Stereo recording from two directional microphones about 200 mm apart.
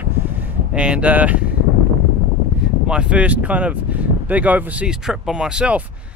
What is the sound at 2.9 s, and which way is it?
Speech, 5° right (ahead or behind).